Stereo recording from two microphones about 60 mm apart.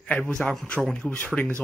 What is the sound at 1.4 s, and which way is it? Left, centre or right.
Speech, centre.